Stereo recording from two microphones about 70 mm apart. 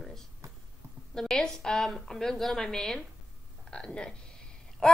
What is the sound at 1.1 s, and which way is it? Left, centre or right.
A woman's voice, centre.